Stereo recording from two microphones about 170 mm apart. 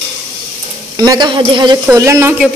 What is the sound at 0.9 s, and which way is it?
Speech, 20° right (ahead or behind).